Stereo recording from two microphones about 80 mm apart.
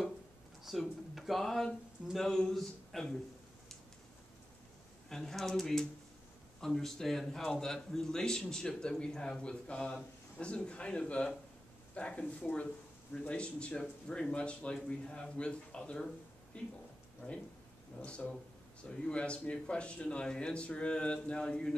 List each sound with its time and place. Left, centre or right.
0.7 s speech: centre
5.1 s a man's voice: centre
18.0 s a man's voice: centre